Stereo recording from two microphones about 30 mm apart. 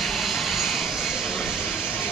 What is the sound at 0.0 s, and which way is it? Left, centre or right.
Vehicle, centre.